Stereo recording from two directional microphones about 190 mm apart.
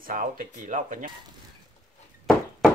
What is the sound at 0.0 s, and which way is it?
Speech, 45° right (ahead or behind).